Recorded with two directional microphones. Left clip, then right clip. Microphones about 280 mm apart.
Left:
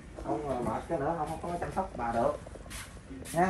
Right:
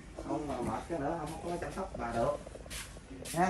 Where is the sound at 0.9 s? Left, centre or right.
Centre.